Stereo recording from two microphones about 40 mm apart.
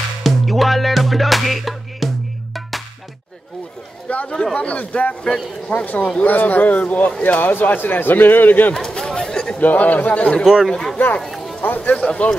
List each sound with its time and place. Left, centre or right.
0.2 s music: centre
4.1 s a man's voice: left
7.3 s a man's voice: left
8.7 s a sound: centre
9.2 s chatter: centre
9.6 s a man's voice: left
10.4 s speech: centre
10.7 s speech: centre
11.2 s music: centre
11.6 s speech: left
11.9 s speech: left